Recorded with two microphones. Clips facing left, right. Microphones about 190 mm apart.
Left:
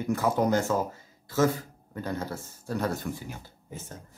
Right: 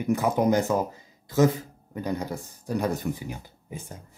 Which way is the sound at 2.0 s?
15° right (ahead or behind).